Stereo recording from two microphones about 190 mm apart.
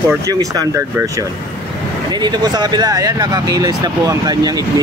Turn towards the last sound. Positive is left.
turn(degrees=-20)  # may be behind; listen again after turning